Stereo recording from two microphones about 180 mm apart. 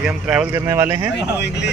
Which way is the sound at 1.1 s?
65° left (ahead or behind).